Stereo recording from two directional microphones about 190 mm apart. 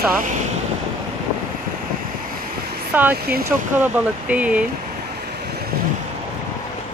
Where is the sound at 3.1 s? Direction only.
55° right (ahead or behind).